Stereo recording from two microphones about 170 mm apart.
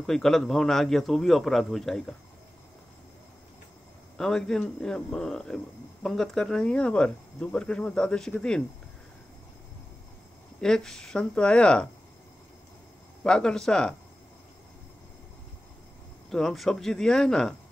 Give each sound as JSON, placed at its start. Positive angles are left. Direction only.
{"t": 0.0, "sound": "speech", "side_deg": 0}
{"t": 4.2, "sound": "speech", "side_deg": 5}
{"t": 10.6, "sound": "speech", "side_deg": 5}
{"t": 13.2, "sound": "speech", "side_deg": 5}
{"t": 16.3, "sound": "speech", "side_deg": 0}